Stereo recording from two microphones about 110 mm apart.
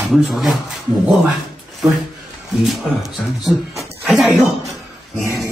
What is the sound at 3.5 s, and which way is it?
Speech, 10° right (ahead or behind).